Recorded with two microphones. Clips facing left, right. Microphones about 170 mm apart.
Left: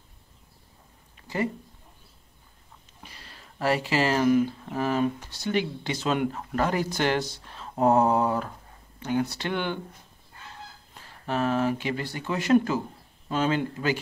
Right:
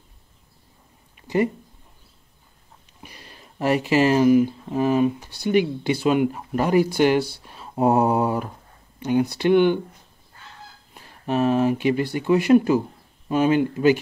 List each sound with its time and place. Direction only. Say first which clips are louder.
1.2 s a sound: right 7 dB; 15° right (ahead or behind)
3.0 s speech: right 4 dB; 15° right (ahead or behind)
11.0 s speech: right 6 dB; 20° right (ahead or behind)